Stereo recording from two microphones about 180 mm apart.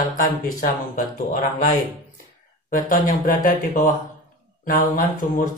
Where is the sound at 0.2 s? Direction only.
50° left (ahead or behind).